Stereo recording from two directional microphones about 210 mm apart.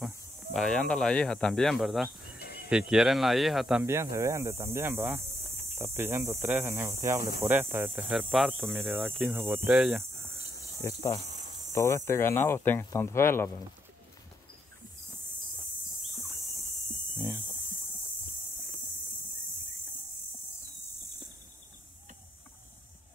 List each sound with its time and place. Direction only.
0.0 s speech: centre (ahead or behind)
2.3 s cricket: 50° left (ahead or behind)
2.9 s speech: centre (ahead or behind)
7.4 s cricket: 10° right (ahead or behind)
10.8 s speech: 15° left (ahead or behind)